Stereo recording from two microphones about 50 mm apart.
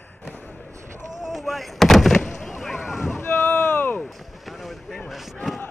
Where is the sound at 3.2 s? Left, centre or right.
Left.